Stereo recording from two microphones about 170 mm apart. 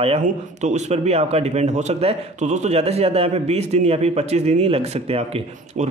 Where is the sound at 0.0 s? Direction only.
40° right (ahead or behind).